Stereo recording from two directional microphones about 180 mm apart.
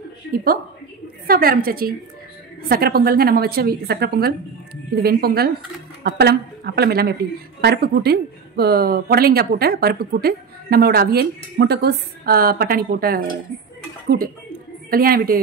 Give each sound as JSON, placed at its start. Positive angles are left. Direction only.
{"t": 0.3, "sound": "a woman's voice", "side_deg": -55}